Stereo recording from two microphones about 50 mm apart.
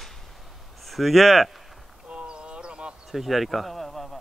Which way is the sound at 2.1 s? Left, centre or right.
Centre.